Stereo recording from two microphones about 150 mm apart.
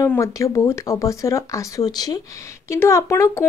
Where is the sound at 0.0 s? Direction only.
20° left (ahead or behind).